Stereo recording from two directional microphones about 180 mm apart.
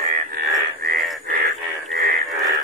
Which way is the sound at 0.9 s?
60° right (ahead or behind).